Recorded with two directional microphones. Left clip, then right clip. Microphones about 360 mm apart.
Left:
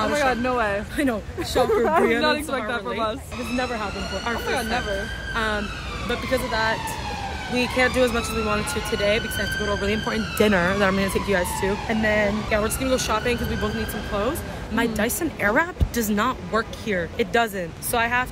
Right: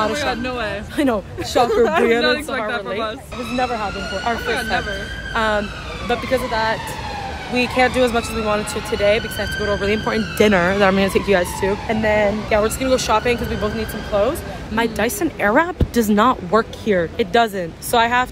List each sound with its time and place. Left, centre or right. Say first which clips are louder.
0.2 s speech: left 1 dB; centre
0.9 s speech: right 5 dB; centre
2.2 s speech: right 3 dB; centre
3.5 s speech: right 6 dB; centre
4.5 s speech: right 2 dB; centre
5.3 s speech: right 7 dB; centre